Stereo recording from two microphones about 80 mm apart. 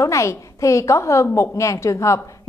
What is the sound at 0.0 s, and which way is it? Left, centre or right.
A woman's voice, left.